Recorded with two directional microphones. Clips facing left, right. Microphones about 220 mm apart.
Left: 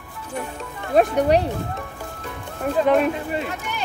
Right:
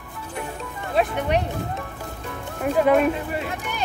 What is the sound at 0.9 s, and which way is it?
Speech, 40° left (ahead or behind).